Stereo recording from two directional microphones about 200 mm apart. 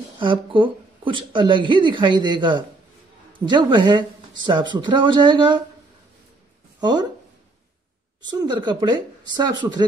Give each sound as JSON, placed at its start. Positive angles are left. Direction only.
{"t": 0.2, "sound": "a woman's voice", "side_deg": -25}
{"t": 6.8, "sound": "speech", "side_deg": -20}
{"t": 8.3, "sound": "a woman's voice", "side_deg": -20}